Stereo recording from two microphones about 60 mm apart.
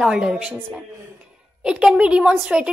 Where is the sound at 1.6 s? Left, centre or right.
Centre.